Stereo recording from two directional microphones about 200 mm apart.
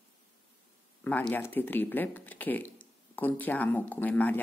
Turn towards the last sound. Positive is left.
turn(degrees=10)  # may be behind; listen again after turning